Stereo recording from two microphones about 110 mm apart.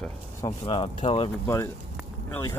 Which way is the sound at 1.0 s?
60° left (ahead or behind).